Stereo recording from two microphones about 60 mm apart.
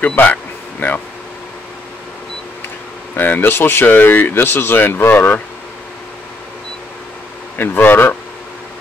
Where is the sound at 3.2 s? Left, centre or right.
Left.